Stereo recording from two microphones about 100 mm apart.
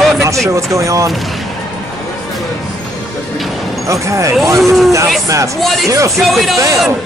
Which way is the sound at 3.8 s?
30° right (ahead or behind).